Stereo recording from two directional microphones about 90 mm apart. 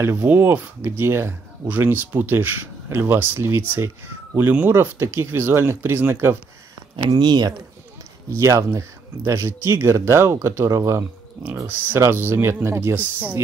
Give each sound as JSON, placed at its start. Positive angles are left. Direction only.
{"t": 0.0, "sound": "speech", "side_deg": -25}
{"t": 7.1, "sound": "speech", "side_deg": -55}
{"t": 8.3, "sound": "speech", "side_deg": -35}
{"t": 11.4, "sound": "speech", "side_deg": -25}